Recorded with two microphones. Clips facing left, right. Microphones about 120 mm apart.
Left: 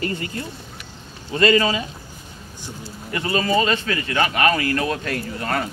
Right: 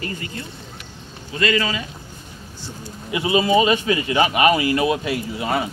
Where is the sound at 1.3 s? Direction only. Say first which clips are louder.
Left 4 dB; 35° left (ahead or behind).